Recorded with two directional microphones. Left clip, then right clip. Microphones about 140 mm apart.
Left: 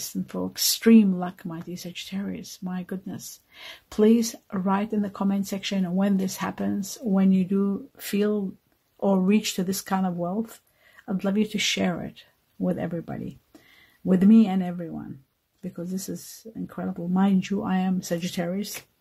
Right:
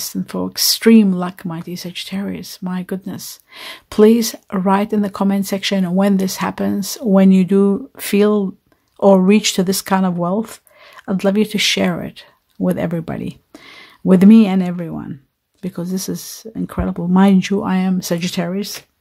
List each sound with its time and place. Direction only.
0.1 s speech: 30° right (ahead or behind)
7.1 s speech: 50° right (ahead or behind)
11.1 s speech: 40° right (ahead or behind)